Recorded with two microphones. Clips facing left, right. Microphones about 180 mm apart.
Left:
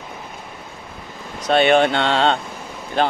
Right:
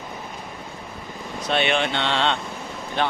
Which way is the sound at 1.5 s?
45° left (ahead or behind).